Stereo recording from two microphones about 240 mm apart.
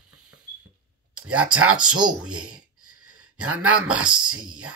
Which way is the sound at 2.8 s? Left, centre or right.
Right.